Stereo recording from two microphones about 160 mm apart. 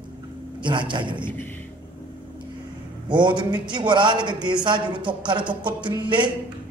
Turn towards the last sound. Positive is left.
turn(degrees=-30)  # may be behind; listen again after turning